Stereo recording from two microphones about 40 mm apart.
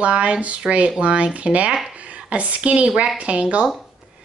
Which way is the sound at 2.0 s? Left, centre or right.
Right.